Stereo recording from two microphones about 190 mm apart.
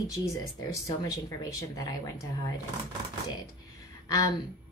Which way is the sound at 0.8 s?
15° left (ahead or behind).